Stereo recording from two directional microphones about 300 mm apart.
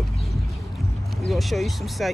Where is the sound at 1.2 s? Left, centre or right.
Centre.